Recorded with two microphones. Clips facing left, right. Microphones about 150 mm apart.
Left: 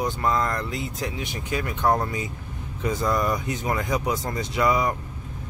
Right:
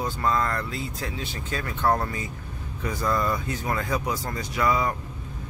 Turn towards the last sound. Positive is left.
turn(degrees=20)  # may be behind; listen again after turning